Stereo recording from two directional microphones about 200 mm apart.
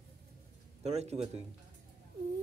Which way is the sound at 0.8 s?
30° right (ahead or behind).